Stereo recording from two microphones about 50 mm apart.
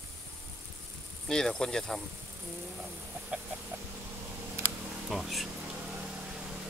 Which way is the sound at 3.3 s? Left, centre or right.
Right.